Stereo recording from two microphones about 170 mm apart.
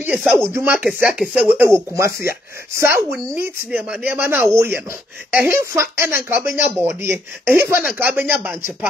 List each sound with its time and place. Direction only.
0.0 s speech: 5° right (ahead or behind)
6.4 s speech: 50° left (ahead or behind)
6.8 s speech: 15° right (ahead or behind)